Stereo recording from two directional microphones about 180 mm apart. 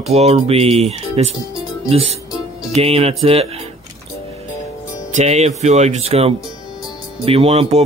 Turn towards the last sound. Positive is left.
turn(degrees=-35)  # may be behind; listen again after turning